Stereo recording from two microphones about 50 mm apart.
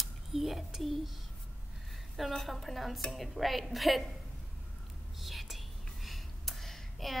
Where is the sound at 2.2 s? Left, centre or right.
Centre.